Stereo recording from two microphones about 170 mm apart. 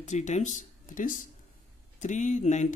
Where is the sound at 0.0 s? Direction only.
45° left (ahead or behind).